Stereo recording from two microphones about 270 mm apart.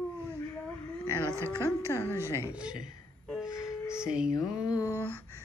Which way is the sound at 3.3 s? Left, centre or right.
Centre.